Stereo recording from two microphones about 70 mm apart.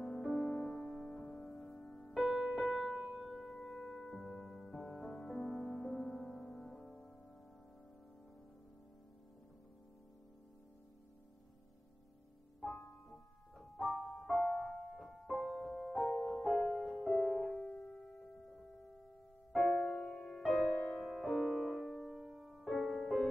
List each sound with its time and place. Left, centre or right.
0.0 s music: centre
0.6 s music: centre
0.9 s music: centre
12.5 s music: centre